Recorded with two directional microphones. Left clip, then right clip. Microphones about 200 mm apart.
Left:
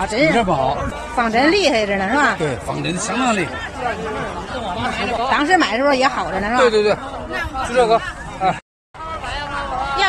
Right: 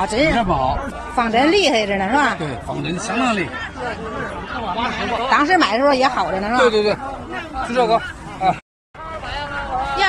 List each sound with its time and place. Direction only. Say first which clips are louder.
0.0 s a woman's voice: even; 15° right (ahead or behind)
0.3 s speech: left 1 dB; 45° left (ahead or behind)
1.1 s a woman's voice: even; 15° right (ahead or behind)
2.8 s speech: right 1 dB; 35° left (ahead or behind)
5.3 s speech: right 1 dB; centre (ahead or behind)
6.7 s speech: left 2 dB; 20° left (ahead or behind)